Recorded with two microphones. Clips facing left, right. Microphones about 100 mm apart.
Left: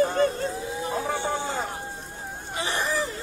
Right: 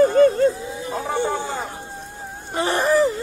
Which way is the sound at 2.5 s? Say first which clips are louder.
Right 9 dB; 45° right (ahead or behind).